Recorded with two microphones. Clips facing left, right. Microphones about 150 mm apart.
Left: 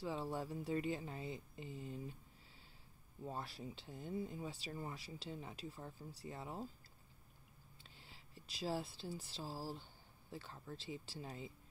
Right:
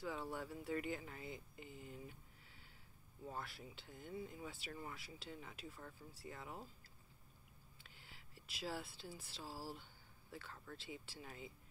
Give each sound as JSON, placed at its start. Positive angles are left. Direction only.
{"t": 0.0, "sound": "speech", "side_deg": 30}
{"t": 3.3, "sound": "speech", "side_deg": 25}
{"t": 7.8, "sound": "a sound", "side_deg": 25}
{"t": 8.6, "sound": "speech", "side_deg": 25}